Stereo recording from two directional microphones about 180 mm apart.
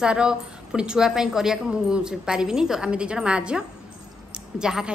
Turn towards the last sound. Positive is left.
turn(degrees=-5)  # may be behind; listen again after turning